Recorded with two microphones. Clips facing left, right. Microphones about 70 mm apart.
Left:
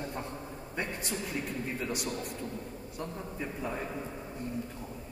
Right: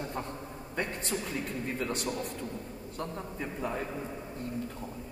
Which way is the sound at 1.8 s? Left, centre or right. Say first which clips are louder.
Right 3 dB; centre.